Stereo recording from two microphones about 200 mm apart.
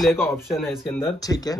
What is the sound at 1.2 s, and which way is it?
Speech, 20° left (ahead or behind).